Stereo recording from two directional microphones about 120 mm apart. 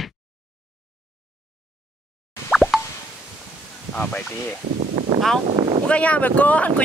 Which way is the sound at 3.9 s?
10° left (ahead or behind).